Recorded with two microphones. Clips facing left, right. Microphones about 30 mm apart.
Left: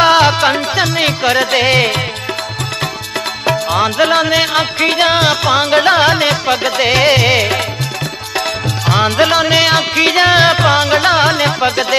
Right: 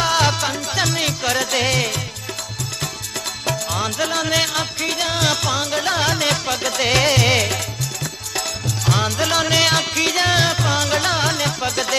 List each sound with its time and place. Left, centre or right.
0.0 s music: left
3.4 s music: left